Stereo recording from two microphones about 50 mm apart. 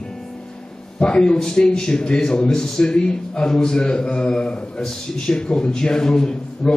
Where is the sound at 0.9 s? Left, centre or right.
Centre.